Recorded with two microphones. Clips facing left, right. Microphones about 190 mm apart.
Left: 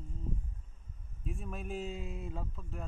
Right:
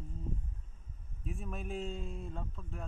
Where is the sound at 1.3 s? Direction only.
Centre (ahead or behind).